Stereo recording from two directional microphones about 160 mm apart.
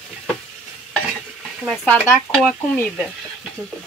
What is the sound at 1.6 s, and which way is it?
Speech, centre (ahead or behind).